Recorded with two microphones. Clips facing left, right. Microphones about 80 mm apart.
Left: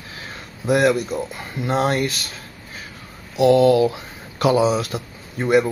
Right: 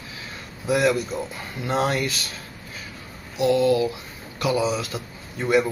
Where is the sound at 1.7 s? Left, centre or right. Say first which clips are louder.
Left 3 dB; left.